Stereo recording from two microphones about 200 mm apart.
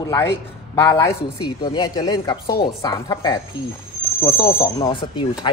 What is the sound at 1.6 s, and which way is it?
Speech, 20° left (ahead or behind).